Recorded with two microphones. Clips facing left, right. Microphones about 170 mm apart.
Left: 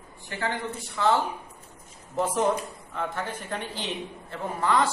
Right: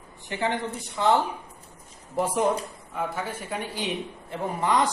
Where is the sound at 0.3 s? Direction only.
20° right (ahead or behind).